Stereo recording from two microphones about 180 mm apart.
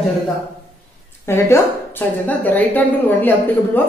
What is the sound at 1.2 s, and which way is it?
A woman's voice, 15° left (ahead or behind).